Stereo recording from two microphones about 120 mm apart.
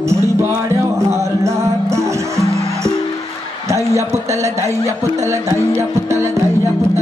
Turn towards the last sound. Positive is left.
turn(degrees=-25)  # may be behind; listen again after turning